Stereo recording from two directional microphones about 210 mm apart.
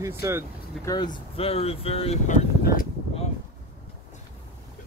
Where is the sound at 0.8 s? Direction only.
20° left (ahead or behind); by 2.9 s 35° left (ahead or behind).